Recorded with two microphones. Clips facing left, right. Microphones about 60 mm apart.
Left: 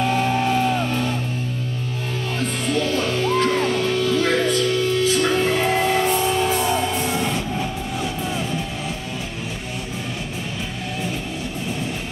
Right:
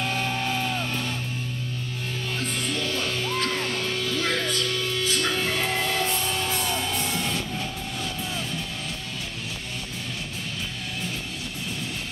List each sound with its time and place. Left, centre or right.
0.0 s music: centre
2.4 s music: centre